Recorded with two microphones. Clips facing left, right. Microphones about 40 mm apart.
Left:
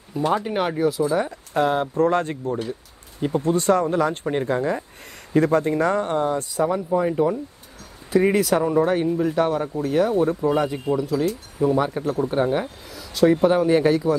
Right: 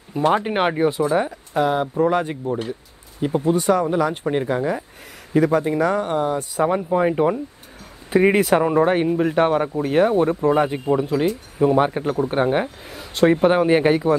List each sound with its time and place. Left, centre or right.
0.1 s speech: right
1.5 s speech: centre
6.5 s speech: right